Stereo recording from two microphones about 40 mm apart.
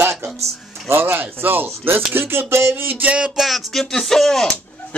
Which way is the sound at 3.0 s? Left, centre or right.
Right.